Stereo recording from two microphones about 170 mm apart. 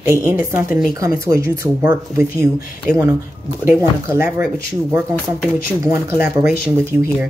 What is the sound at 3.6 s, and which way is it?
Speech, 15° right (ahead or behind).